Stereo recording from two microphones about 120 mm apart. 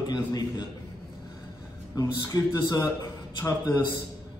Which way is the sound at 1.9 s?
25° left (ahead or behind).